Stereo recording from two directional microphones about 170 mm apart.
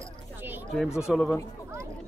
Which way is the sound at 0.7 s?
5° right (ahead or behind).